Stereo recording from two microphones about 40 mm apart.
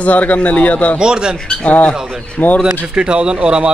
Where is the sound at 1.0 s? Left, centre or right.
Centre.